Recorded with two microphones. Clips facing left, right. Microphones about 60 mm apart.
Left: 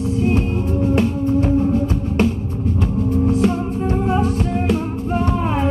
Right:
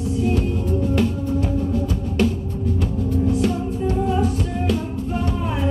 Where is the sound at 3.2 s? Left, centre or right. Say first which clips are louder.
Left 2 dB; left.